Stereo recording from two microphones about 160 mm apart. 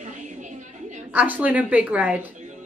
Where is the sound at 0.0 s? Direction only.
50° right (ahead or behind).